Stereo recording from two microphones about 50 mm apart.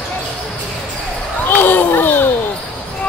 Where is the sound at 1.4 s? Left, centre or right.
Left.